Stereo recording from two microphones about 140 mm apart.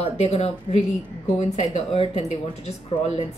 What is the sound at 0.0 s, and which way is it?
Speech, 45° left (ahead or behind).